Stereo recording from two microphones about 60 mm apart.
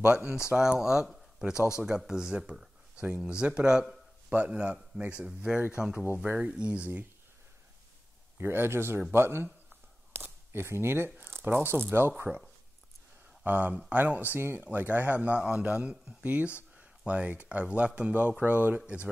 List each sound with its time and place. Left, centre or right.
0.1 s speech: centre
1.1 s a sound: centre
1.7 s speech: centre
8.4 s speech: right
10.1 s camera: right
11.7 s speech: right
12.3 s speech: centre
13.4 s speech: right
14.3 s speech: right